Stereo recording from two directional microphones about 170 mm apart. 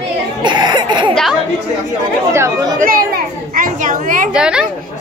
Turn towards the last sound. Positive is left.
turn(degrees=-5)  # may be behind; listen again after turning